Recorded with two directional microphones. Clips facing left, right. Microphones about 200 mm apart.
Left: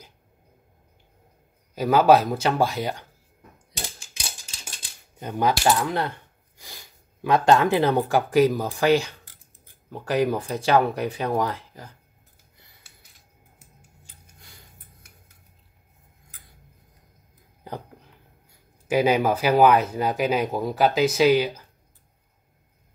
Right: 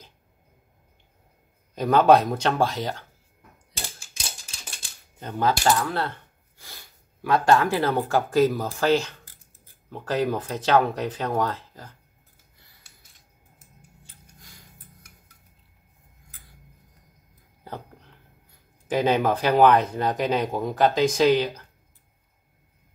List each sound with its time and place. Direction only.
1.8 s speech: 5° left (ahead or behind)
5.2 s speech: 15° left (ahead or behind)
18.9 s speech: 10° left (ahead or behind)